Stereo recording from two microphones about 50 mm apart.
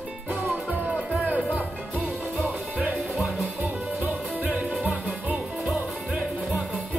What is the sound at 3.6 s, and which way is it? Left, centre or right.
Music, right.